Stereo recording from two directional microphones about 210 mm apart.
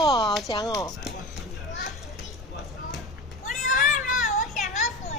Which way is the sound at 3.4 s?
35° left (ahead or behind).